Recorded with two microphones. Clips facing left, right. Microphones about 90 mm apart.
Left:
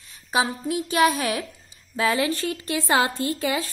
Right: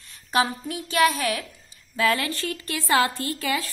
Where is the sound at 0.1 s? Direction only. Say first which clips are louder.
Right 1 dB; 10° left (ahead or behind).